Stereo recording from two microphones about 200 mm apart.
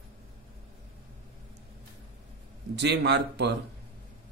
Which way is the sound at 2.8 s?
60° right (ahead or behind).